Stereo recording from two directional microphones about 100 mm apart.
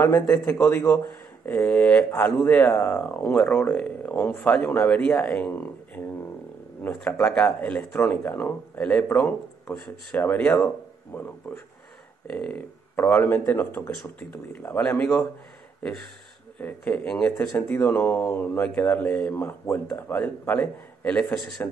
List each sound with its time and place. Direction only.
0.0 s speech: 20° left (ahead or behind); by 4.6 s 5° left (ahead or behind)
4.6 s speech: 15° left (ahead or behind)
6.9 s speech: 10° left (ahead or behind)
14.8 s speech: 10° left (ahead or behind)
16.5 s speech: 15° left (ahead or behind)
19.3 s speech: 25° left (ahead or behind)